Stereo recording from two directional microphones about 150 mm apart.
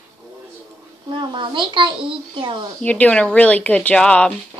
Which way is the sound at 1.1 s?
30° right (ahead or behind).